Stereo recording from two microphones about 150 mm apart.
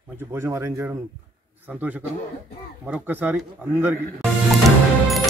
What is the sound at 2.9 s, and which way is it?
Speech, 10° right (ahead or behind).